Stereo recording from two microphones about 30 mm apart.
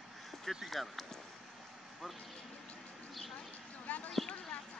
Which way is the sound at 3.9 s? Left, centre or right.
Left.